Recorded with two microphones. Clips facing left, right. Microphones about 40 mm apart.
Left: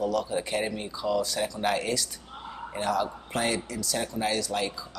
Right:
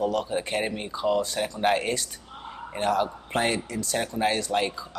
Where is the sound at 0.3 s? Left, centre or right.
Right.